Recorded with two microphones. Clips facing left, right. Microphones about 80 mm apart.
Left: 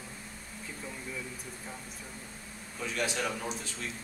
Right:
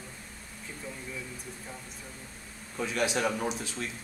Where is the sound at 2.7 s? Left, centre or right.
Centre.